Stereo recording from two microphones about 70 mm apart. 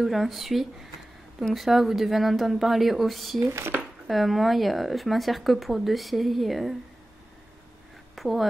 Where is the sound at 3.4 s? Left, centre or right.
Right.